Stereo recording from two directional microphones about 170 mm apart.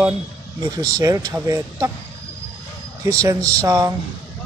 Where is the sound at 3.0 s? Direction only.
20° right (ahead or behind).